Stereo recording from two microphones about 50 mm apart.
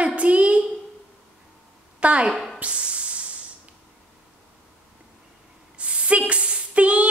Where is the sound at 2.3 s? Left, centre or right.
Centre.